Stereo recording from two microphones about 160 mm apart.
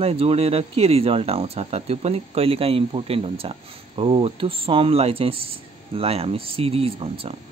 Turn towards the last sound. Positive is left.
turn(degrees=-35)  # may be behind; listen again after turning